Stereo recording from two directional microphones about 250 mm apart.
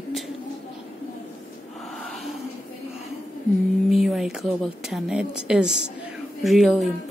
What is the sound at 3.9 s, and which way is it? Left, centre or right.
Speech, centre.